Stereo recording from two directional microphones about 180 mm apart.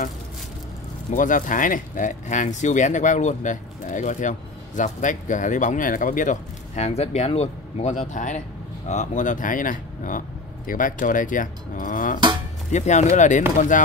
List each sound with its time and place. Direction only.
1.1 s speech: 45° left (ahead or behind)